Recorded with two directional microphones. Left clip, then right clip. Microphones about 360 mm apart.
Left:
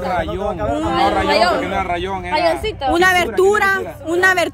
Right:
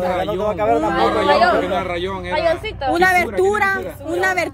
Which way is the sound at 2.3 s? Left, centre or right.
Left.